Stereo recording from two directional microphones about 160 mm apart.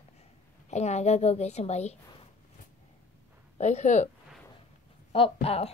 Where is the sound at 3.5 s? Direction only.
45° left (ahead or behind).